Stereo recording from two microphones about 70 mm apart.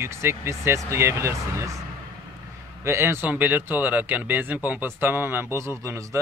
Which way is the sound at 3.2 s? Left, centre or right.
Right.